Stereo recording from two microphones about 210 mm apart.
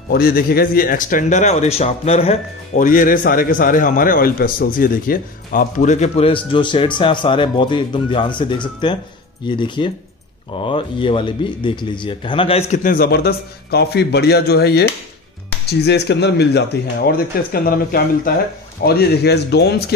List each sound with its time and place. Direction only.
0.1 s speech: 45° left (ahead or behind)